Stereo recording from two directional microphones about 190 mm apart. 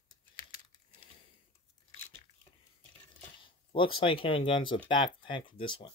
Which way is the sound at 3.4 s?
25° left (ahead or behind).